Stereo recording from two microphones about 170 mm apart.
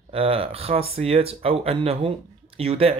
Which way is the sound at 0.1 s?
35° right (ahead or behind).